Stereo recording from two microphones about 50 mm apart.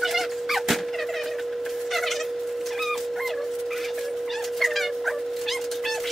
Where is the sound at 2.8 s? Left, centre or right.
Centre.